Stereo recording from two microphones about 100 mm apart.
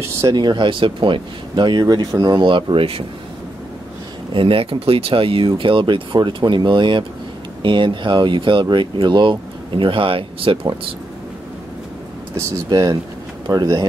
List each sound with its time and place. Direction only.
0.3 s speech: 45° right (ahead or behind)
4.3 s speech: 60° right (ahead or behind)
12.6 s speech: 40° right (ahead or behind)